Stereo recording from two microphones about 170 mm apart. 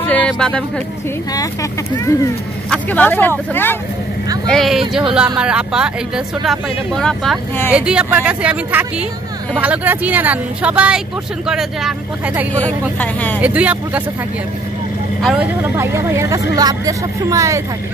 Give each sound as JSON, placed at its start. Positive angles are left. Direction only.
{"t": 0.0, "sound": "speech", "side_deg": 10}
{"t": 1.3, "sound": "speech", "side_deg": 20}
{"t": 2.7, "sound": "speech", "side_deg": 10}
{"t": 4.5, "sound": "speech", "side_deg": 0}
{"t": 12.5, "sound": "speech", "side_deg": 10}
{"t": 13.4, "sound": "speech", "side_deg": -10}
{"t": 15.8, "sound": "speech", "side_deg": -15}